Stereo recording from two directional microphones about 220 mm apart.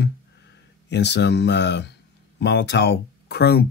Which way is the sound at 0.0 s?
50° left (ahead or behind).